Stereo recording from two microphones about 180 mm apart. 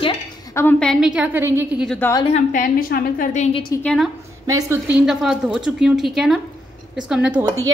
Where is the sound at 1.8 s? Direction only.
10° left (ahead or behind).